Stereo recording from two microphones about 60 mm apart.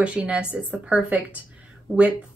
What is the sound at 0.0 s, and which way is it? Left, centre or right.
Speech, centre.